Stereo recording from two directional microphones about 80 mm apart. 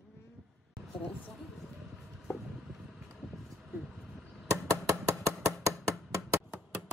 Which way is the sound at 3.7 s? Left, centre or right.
Centre.